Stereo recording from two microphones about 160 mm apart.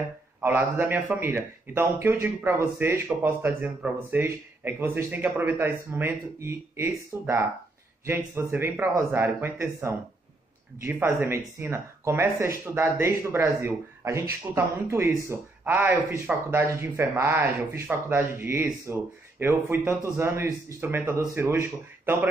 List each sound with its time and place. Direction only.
0.4 s speech: 10° right (ahead or behind)